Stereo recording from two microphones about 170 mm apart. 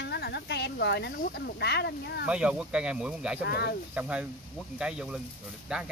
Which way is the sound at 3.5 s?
70° left (ahead or behind).